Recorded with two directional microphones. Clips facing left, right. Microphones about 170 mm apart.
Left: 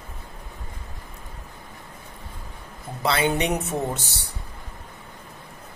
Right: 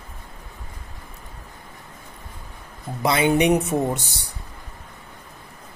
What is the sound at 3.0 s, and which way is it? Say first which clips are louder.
Speech: right 4 dB; 15° right (ahead or behind).